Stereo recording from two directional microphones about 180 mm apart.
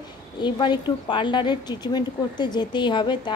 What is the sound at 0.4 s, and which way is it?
A woman's voice, 25° left (ahead or behind).